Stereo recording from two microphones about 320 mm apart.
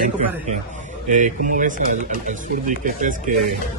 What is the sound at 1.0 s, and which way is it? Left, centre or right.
Speech, right.